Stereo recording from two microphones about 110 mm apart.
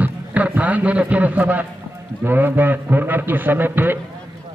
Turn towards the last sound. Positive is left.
turn(degrees=-20)  # may be behind; listen again after turning